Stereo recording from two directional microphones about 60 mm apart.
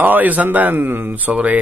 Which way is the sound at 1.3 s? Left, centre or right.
Right.